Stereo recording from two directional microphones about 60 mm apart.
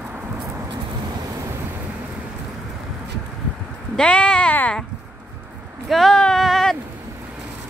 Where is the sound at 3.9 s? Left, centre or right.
Centre.